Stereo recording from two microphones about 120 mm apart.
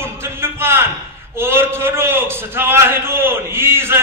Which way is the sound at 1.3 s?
20° right (ahead or behind).